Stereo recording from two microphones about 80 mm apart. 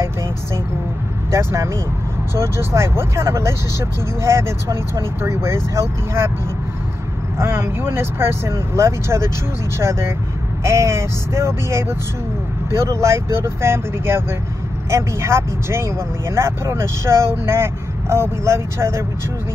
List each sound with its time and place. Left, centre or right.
1.3 s speech: right
7.3 s speech: right